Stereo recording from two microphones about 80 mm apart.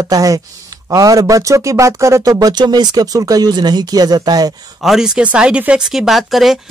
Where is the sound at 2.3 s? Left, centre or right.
Right.